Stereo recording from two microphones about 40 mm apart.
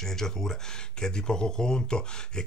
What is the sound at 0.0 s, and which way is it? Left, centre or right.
Speech, centre.